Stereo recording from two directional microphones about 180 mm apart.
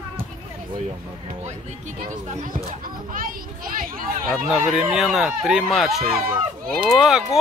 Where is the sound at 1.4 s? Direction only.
40° right (ahead or behind).